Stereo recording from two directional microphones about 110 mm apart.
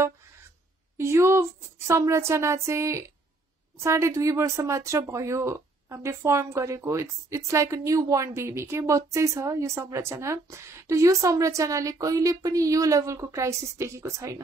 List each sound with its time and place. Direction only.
0.9 s speech: 25° right (ahead or behind)